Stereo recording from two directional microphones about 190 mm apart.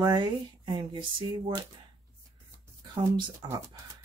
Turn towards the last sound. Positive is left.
turn(degrees=-25)  # may be behind; listen again after turning